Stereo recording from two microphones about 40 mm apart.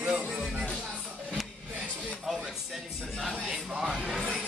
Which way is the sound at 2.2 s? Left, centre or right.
Centre.